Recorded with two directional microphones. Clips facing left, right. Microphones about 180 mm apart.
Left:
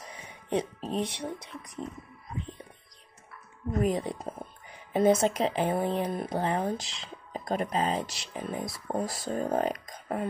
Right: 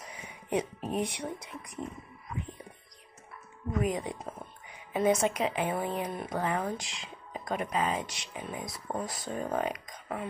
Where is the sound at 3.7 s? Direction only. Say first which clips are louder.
Left 3 dB; 35° left (ahead or behind).